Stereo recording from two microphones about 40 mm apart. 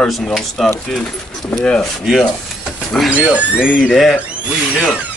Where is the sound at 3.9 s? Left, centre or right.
Centre.